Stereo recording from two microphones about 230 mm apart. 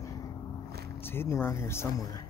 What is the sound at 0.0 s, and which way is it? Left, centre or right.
Vehicle, centre.